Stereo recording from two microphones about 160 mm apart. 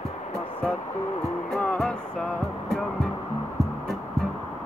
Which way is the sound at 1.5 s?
5° left (ahead or behind).